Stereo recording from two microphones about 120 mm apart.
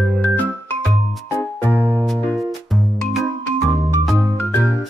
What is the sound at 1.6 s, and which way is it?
Music, 20° right (ahead or behind).